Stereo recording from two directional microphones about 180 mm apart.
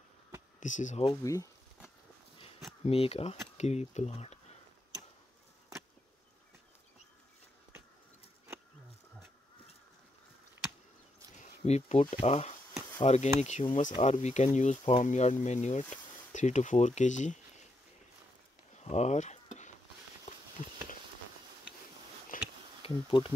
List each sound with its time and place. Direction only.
0.6 s speech: 45° left (ahead or behind)
1.2 s speech: 15° left (ahead or behind)
2.8 s speech: 35° left (ahead or behind)
11.6 s speech: 40° left (ahead or behind)
18.9 s a sound: 40° left (ahead or behind)
22.3 s a sound: 50° left (ahead or behind)
22.8 s speech: 30° left (ahead or behind)